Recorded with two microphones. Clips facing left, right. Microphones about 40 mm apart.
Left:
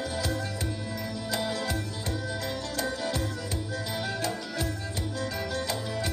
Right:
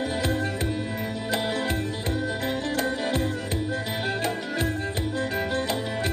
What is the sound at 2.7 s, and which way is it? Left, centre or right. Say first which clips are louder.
Music: right 3 dB; right.